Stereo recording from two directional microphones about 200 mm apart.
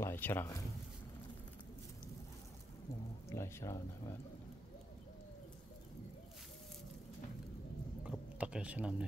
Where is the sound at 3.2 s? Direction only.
15° left (ahead or behind).